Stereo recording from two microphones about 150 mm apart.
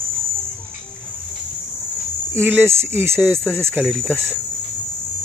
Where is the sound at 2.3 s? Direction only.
15° right (ahead or behind).